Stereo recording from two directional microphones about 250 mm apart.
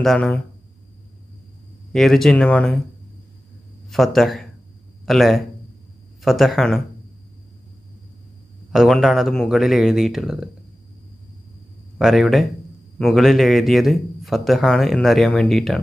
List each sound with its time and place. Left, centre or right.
0.0 s a man's voice: centre
1.9 s a man's voice: centre
3.9 s a man's voice: centre
8.7 s a man's voice: centre
12.0 s a man's voice: centre